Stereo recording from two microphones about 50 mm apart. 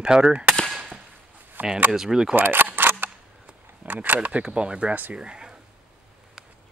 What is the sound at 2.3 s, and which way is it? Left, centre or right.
Speech, right.